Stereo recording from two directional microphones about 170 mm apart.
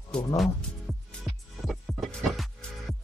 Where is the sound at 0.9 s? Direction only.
5° right (ahead or behind).